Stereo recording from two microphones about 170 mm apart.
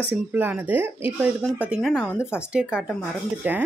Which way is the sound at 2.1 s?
15° left (ahead or behind).